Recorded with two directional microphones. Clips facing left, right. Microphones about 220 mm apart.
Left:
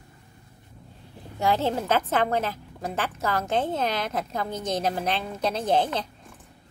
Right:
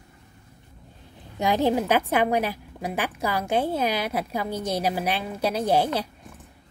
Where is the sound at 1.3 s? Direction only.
15° right (ahead or behind).